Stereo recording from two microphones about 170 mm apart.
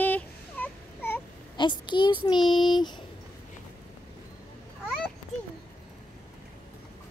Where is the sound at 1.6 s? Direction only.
25° left (ahead or behind).